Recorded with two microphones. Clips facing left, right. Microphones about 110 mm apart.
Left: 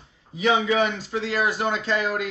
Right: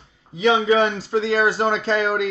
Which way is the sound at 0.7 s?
35° right (ahead or behind).